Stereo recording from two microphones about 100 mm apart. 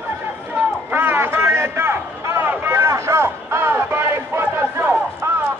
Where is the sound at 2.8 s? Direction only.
30° right (ahead or behind).